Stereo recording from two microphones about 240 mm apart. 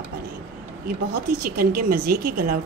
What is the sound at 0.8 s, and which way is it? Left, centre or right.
A woman's voice, right.